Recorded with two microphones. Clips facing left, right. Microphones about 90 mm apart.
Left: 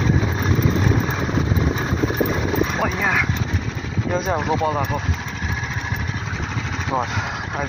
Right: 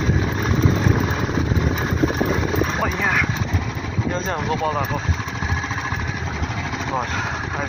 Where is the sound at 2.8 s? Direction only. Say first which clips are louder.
Even; centre (ahead or behind).